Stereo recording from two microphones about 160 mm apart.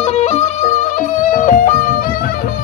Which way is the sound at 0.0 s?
45° left (ahead or behind).